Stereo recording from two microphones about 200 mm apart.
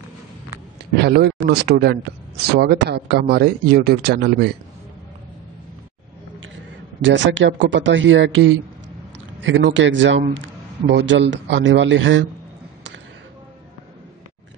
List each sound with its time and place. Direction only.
0.9 s speech: 55° right (ahead or behind)
7.0 s a man's voice: 70° right (ahead or behind)